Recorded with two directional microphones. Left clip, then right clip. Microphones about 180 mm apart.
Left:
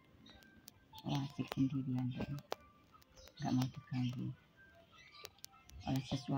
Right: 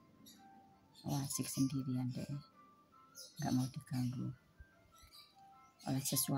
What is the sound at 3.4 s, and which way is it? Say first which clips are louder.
Speech: even; 15° right (ahead or behind).